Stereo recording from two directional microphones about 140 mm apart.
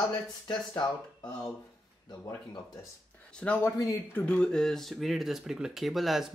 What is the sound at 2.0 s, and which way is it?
Speech, 30° left (ahead or behind).